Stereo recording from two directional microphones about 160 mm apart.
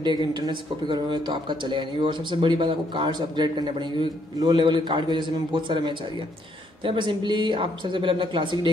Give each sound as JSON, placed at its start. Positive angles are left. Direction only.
{"t": 0.0, "sound": "speech", "side_deg": -30}